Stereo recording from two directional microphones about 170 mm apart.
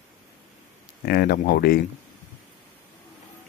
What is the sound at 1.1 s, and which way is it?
Speech, 60° left (ahead or behind).